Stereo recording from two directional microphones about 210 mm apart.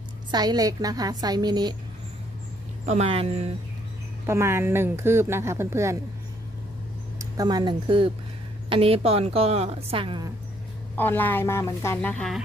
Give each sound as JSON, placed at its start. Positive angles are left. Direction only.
{"t": 0.3, "sound": "a woman's voice", "side_deg": -20}
{"t": 2.9, "sound": "a woman's voice", "side_deg": -30}
{"t": 4.3, "sound": "speech", "side_deg": -10}
{"t": 7.2, "sound": "a woman's voice", "side_deg": -20}
{"t": 11.0, "sound": "a woman's voice", "side_deg": 10}